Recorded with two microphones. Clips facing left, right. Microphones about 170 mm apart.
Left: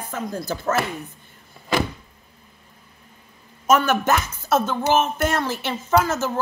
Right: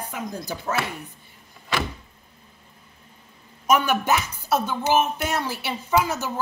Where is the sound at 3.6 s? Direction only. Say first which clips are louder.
Left 2 dB; 15° right (ahead or behind).